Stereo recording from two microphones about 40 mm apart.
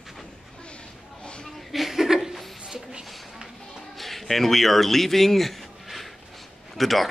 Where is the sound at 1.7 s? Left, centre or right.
Centre.